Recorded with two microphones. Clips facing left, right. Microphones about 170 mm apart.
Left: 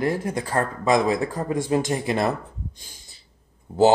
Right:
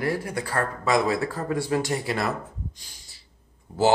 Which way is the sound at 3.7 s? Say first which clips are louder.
Left 7 dB; 25° left (ahead or behind).